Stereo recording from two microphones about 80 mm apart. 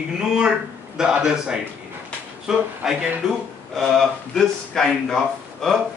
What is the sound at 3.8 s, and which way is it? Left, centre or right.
A man's voice, centre.